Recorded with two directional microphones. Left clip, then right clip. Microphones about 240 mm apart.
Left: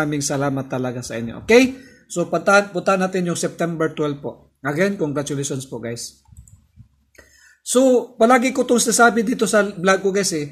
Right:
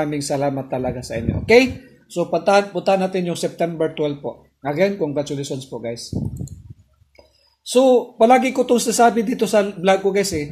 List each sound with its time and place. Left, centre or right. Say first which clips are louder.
0.0 s speech: right 1 dB; centre
7.6 s speech: right 1 dB; left